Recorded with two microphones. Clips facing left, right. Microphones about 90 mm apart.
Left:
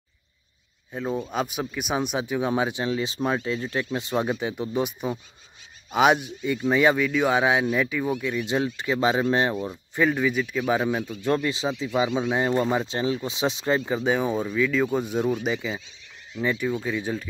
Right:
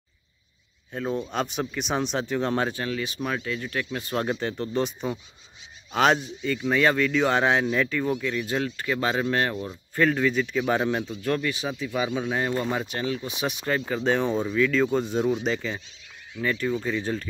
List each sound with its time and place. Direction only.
0.9 s speech: 5° left (ahead or behind)
11.2 s speech: 25° left (ahead or behind); by 17.3 s 5° left (ahead or behind)